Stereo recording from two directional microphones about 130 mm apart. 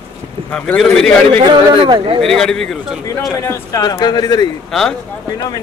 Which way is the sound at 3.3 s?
25° left (ahead or behind).